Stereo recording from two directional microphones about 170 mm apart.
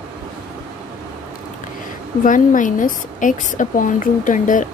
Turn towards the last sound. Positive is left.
turn(degrees=50)  # may be behind; listen again after turning